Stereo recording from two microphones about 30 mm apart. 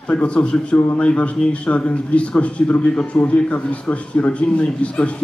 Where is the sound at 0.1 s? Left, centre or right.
Left.